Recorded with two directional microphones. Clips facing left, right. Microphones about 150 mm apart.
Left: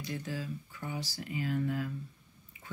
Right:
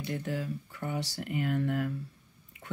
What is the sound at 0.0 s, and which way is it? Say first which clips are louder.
Speech: right 4 dB; 60° right (ahead or behind).